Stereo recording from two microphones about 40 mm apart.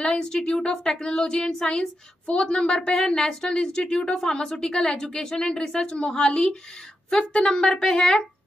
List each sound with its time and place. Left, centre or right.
0.0 s a woman's voice: left